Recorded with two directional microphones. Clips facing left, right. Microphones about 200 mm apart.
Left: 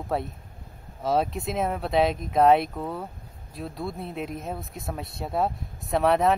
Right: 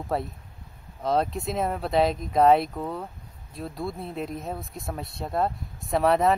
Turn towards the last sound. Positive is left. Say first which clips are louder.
# even
turn(degrees=0)  # may be behind; listen again after turning